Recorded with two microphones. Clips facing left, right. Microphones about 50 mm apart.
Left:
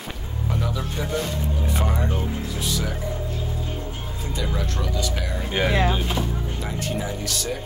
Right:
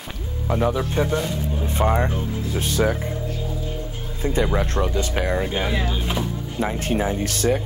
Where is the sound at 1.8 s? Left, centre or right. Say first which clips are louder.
Right 7 dB; right.